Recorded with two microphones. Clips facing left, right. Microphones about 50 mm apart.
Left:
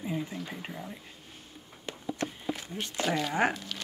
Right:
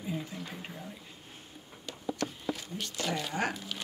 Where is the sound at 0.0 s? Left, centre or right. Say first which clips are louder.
Left 3 dB; left.